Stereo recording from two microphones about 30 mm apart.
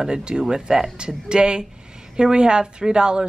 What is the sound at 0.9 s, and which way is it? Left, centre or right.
Speech, right.